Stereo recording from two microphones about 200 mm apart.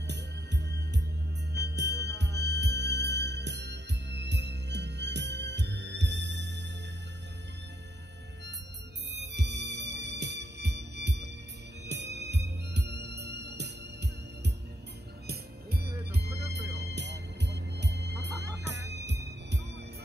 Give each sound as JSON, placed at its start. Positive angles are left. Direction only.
{"t": 0.0, "sound": "music", "side_deg": -60}
{"t": 9.1, "sound": "music", "side_deg": -60}
{"t": 15.2, "sound": "music", "side_deg": -50}
{"t": 16.3, "sound": "music", "side_deg": -15}
{"t": 16.5, "sound": "music", "side_deg": -60}